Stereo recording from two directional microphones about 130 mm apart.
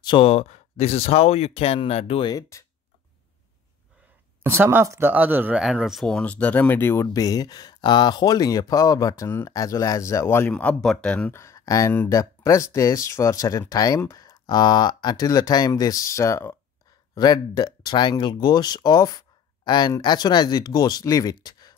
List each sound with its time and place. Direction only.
0.0 s speech: 35° left (ahead or behind)
0.3 s speech: 55° left (ahead or behind)
4.4 s speech: 20° right (ahead or behind)
5.6 s speech: centre (ahead or behind); by 10.5 s 20° left (ahead or behind)
10.5 s speech: 10° left (ahead or behind)
11.3 s speech: 25° left (ahead or behind)